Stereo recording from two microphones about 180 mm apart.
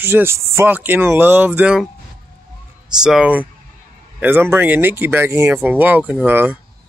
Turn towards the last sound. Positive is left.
turn(degrees=-10)  # may be behind; listen again after turning